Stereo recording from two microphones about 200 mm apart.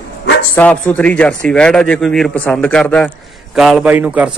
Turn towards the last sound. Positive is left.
turn(degrees=-5)  # may be behind; listen again after turning